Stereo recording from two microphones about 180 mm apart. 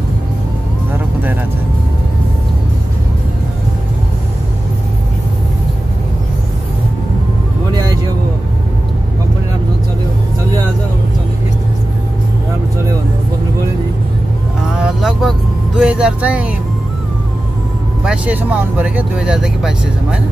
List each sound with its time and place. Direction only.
14.8 s vehicle: 5° right (ahead or behind)
18.0 s speech: 5° right (ahead or behind)